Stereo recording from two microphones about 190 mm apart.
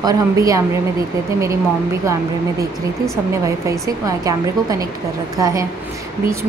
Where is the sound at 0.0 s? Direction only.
20° right (ahead or behind).